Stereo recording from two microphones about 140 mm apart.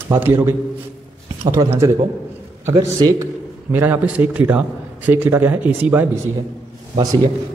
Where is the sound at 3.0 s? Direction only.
20° right (ahead or behind).